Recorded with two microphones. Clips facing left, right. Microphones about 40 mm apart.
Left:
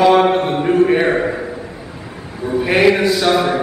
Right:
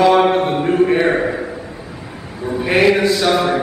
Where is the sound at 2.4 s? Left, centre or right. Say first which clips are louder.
Left 1 dB; centre.